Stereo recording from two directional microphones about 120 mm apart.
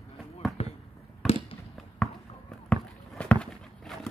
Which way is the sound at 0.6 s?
60° left (ahead or behind).